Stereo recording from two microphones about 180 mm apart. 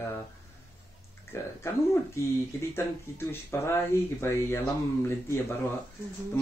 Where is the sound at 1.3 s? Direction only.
15° left (ahead or behind).